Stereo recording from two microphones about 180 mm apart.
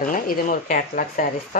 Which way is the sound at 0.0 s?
50° left (ahead or behind).